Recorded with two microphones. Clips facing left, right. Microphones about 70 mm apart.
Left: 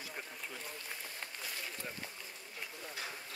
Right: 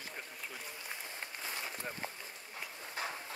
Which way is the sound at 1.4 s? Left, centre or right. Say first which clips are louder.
Right 3 dB; right.